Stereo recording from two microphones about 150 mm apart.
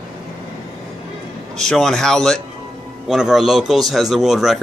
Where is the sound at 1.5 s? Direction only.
5° left (ahead or behind).